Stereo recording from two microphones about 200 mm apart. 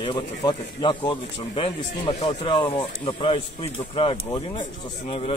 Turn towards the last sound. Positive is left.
turn(degrees=25)  # may be behind; listen again after turning